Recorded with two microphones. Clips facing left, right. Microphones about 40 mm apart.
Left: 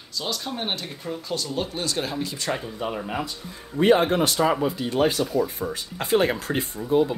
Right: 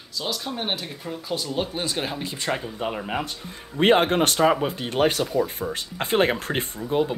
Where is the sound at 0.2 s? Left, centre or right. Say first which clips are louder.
Even; centre.